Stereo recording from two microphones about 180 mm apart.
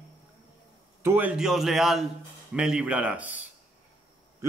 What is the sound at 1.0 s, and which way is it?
A man's voice, 10° right (ahead or behind).